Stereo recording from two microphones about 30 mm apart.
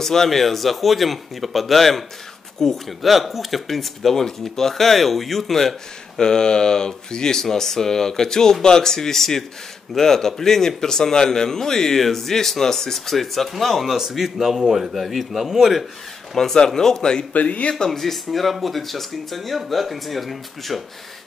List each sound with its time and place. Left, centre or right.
0.0 s speech: centre
3.0 s speech: centre
6.1 s speech: left; by 15.8 s centre
16.5 s speech: centre
17.3 s speech: left
17.8 s speech: centre